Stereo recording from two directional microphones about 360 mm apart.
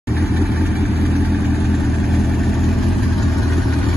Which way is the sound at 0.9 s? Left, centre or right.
Right.